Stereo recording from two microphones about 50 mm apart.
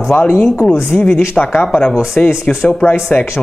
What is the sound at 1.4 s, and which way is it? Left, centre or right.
Speech, left.